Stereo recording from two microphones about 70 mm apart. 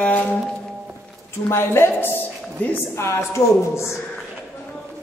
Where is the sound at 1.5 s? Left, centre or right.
Left.